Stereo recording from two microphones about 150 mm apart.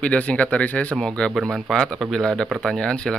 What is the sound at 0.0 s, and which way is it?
Speech, 10° left (ahead or behind).